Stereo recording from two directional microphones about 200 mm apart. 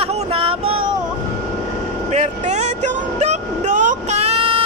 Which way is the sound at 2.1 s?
35° right (ahead or behind).